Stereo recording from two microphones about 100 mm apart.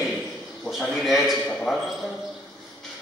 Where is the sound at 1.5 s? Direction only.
10° left (ahead or behind).